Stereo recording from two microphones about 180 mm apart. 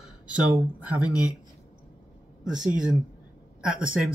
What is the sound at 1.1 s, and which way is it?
Speech, 20° left (ahead or behind).